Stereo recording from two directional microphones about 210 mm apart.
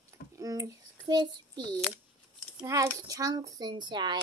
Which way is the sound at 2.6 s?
15° right (ahead or behind).